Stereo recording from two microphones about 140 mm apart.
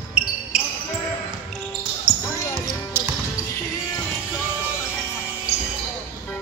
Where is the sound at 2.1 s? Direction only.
35° right (ahead or behind).